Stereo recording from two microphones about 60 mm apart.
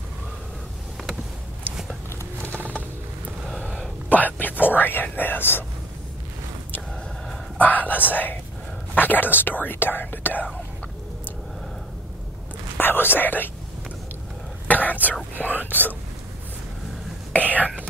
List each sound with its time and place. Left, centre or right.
3.4 s a sound: centre
4.1 s speech: left
7.5 s whispering: left
8.1 s speech: left
12.7 s speech: left
14.7 s whispering: left
15.3 s speech: left
17.4 s whispering: right